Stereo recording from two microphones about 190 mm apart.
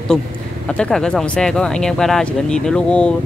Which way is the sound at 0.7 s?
5° left (ahead or behind).